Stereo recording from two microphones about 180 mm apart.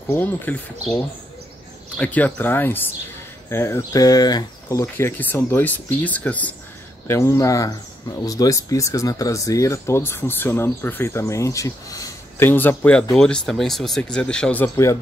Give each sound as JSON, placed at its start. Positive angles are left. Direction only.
{"t": 0.1, "sound": "speech", "side_deg": 10}